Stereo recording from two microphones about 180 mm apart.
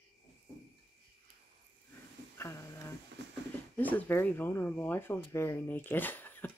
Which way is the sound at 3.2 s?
75° right (ahead or behind).